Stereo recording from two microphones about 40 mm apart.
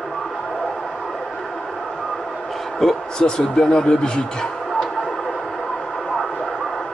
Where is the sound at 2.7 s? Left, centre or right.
Centre.